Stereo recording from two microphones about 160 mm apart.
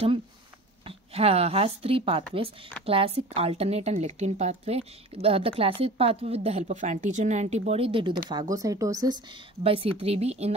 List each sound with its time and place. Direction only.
0.8 s speech: 40° right (ahead or behind)
8.3 s speech: 25° right (ahead or behind)
9.6 s speech: 35° right (ahead or behind)